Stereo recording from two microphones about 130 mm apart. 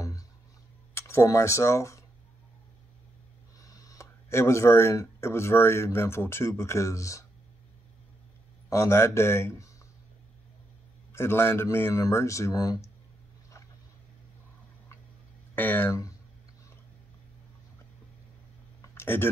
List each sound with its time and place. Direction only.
0.9 s speech: 20° left (ahead or behind)
3.5 s speech: 25° left (ahead or behind)
8.6 s speech: 25° left (ahead or behind)
11.1 s speech: 20° left (ahead or behind)
15.5 s speech: 15° left (ahead or behind)
18.8 s a sound: 20° left (ahead or behind)